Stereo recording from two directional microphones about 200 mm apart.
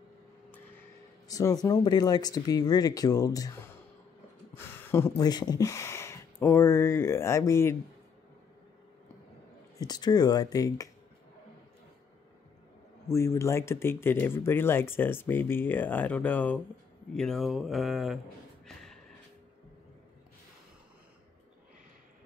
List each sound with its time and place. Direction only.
1.3 s speech: 20° left (ahead or behind)
9.8 s speech: 20° left (ahead or behind)
13.1 s speech: 15° left (ahead or behind)
18.7 s a sound: centre (ahead or behind)